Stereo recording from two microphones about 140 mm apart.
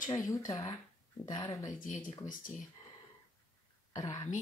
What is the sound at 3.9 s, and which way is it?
Speech, 25° left (ahead or behind).